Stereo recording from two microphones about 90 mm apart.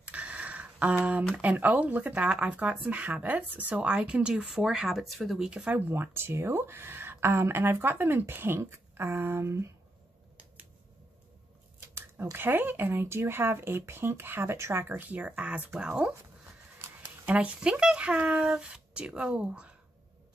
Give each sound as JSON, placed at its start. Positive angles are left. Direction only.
{"t": 0.0, "sound": "speech", "side_deg": -15}
{"t": 5.5, "sound": "speech", "side_deg": -10}
{"t": 5.9, "sound": "a woman's voice", "side_deg": -25}
{"t": 11.9, "sound": "a woman's voice", "side_deg": -25}
{"t": 17.3, "sound": "speech", "side_deg": -15}